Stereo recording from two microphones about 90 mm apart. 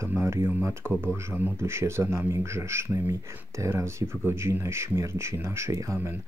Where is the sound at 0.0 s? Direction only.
30° right (ahead or behind).